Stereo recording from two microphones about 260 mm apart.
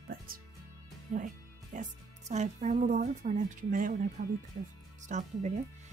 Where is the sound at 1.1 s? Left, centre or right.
Right.